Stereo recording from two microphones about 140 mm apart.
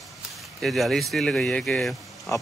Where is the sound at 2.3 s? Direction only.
20° left (ahead or behind).